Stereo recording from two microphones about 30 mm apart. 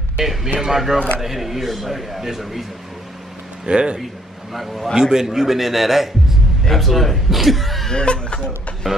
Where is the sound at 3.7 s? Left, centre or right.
Right.